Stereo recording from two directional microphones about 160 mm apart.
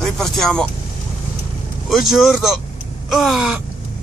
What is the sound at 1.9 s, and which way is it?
Speech, centre (ahead or behind).